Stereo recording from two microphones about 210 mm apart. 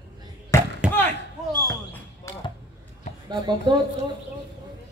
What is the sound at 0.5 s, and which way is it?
Basketball bounce, 15° left (ahead or behind).